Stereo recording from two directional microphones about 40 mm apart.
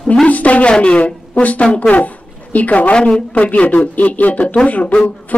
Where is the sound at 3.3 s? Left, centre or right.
Left.